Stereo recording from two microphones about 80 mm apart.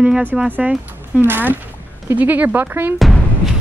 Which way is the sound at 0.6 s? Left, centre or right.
Centre.